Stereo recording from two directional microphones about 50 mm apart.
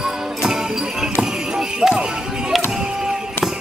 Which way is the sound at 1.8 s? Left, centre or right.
Centre.